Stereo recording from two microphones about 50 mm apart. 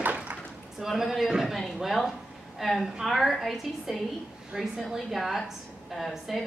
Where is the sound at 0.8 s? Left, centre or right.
Centre.